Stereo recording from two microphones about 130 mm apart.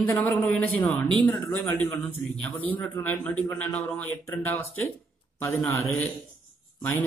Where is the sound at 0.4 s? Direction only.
10° left (ahead or behind).